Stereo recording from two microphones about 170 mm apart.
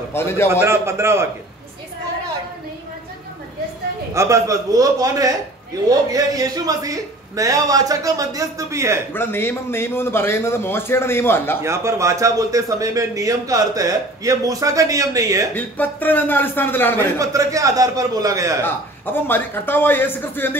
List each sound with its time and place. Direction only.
0.1 s a man's voice: 15° left (ahead or behind)
0.5 s a man's voice: 15° right (ahead or behind)
4.1 s speech: 20° right (ahead or behind)
9.1 s a man's voice: 15° left (ahead or behind)
11.6 s speech: 15° right (ahead or behind)
15.5 s a man's voice: 10° left (ahead or behind)
17.2 s speech: 20° right (ahead or behind)
19.1 s a man's voice: 10° left (ahead or behind)